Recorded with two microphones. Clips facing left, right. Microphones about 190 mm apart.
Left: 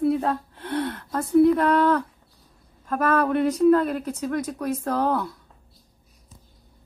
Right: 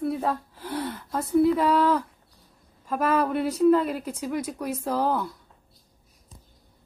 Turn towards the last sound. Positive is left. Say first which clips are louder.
# left 2 dB
turn(degrees=-5)  # may be behind; listen again after turning